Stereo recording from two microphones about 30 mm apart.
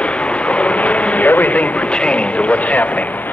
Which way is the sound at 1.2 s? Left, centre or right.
Left.